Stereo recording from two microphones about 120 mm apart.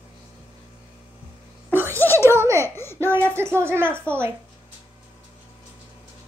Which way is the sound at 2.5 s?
20° left (ahead or behind).